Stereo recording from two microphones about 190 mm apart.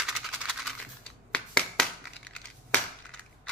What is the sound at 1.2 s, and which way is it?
Finger snapping, 5° left (ahead or behind).